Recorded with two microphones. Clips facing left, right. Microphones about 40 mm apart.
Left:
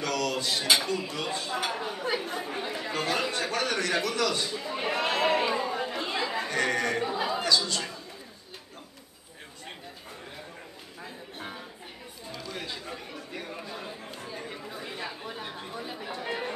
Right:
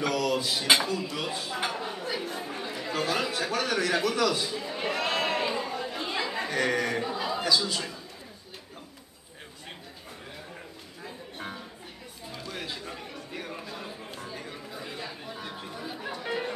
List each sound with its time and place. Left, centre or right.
0.0 s dishes: centre
1.1 s a man's voice: centre
2.5 s chatter: centre
2.8 s a man's voice: centre
4.7 s a sound: centre
5.9 s chatter: centre
6.3 s speech: centre
7.1 s a sound: centre
7.4 s a man's voice: centre
11.1 s music: centre
12.3 s chatter: centre